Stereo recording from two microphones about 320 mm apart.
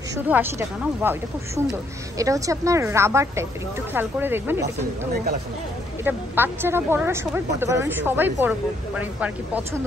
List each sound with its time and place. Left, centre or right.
0.1 s a woman's voice: centre
6.0 s a woman's voice: centre